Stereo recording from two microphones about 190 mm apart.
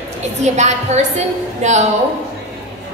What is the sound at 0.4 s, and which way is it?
A woman's voice, 35° right (ahead or behind).